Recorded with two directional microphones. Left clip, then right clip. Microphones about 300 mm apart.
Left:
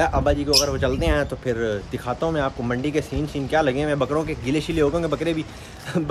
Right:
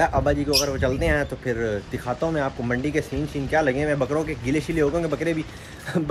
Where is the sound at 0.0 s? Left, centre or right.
Centre.